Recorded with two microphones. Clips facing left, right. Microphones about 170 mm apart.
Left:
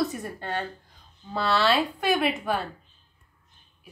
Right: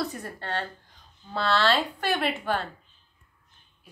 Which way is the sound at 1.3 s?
5° left (ahead or behind).